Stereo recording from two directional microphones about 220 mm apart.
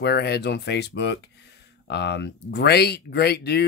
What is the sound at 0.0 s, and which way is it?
Speech, 50° left (ahead or behind).